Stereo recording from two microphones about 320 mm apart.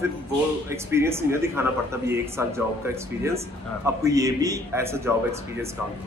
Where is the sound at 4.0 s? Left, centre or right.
Centre.